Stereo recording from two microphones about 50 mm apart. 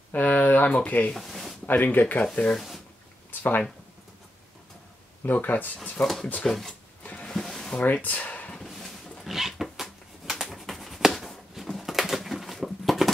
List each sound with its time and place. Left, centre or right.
0.1 s speech: left
1.1 s a sound: centre
1.7 s speech: left
2.5 s speech: centre
3.3 s speech: left
5.2 s speech: left
6.0 s speech: centre
6.4 s speech: centre
7.0 s a sound: left
7.2 s music: centre
7.7 s speech: left
8.6 s dog: centre
9.2 s a sound: centre